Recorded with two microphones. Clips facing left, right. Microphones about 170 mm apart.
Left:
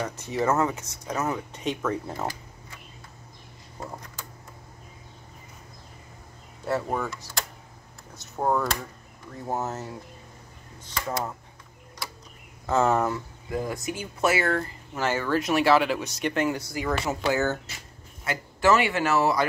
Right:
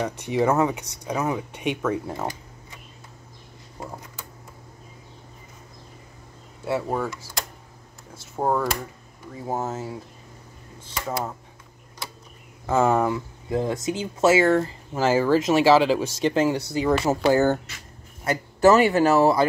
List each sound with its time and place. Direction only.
0.3 s speech: 15° right (ahead or behind)
6.6 s speech: 10° right (ahead or behind)
12.6 s speech: 15° right (ahead or behind)
13.5 s a man's voice: 25° right (ahead or behind)